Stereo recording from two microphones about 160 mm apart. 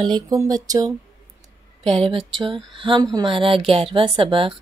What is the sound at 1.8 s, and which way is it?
A woman's voice, 35° right (ahead or behind).